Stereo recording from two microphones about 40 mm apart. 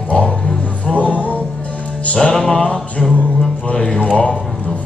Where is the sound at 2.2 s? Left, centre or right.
Centre.